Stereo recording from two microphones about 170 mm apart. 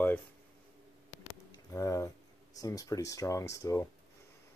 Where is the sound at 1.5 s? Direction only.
20° left (ahead or behind).